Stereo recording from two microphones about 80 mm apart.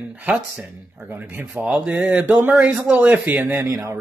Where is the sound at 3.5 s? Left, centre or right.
Right.